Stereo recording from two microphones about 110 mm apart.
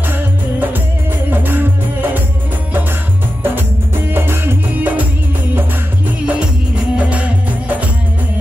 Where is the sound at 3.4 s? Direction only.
20° right (ahead or behind).